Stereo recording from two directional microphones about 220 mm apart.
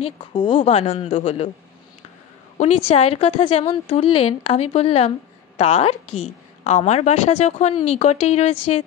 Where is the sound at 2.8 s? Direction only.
30° left (ahead or behind).